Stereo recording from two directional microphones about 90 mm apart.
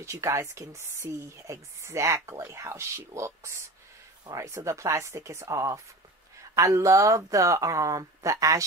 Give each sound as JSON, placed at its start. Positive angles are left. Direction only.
{"t": 0.0, "sound": "speech", "side_deg": -35}